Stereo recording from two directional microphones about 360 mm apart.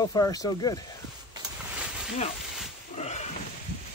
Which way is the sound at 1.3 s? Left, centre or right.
Centre.